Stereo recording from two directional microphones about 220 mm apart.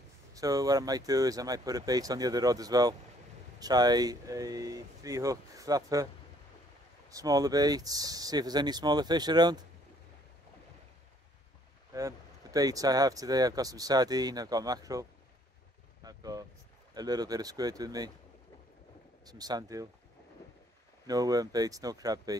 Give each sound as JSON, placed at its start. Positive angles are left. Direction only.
{"t": 0.3, "sound": "speech", "side_deg": -15}
{"t": 7.1, "sound": "speech", "side_deg": -15}
{"t": 11.9, "sound": "speech", "side_deg": -15}
{"t": 16.0, "sound": "vehicle", "side_deg": -15}
{"t": 16.9, "sound": "speech", "side_deg": -15}
{"t": 19.2, "sound": "speech", "side_deg": -15}
{"t": 21.1, "sound": "speech", "side_deg": -15}